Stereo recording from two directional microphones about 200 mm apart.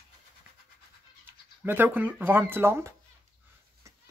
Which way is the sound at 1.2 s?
10° right (ahead or behind).